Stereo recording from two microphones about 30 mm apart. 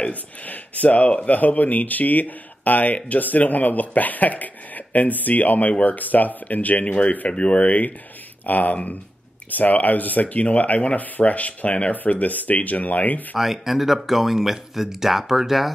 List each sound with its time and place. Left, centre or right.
0.1 s speech: left
6.9 s speech: left
7.6 s speech: left
10.2 s speech: left
11.9 s speech: left
13.4 s speech: centre